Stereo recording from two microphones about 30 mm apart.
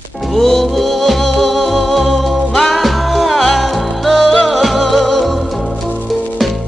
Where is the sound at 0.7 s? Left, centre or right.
Centre.